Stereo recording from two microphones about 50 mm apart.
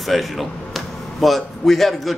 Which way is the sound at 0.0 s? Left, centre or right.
Centre.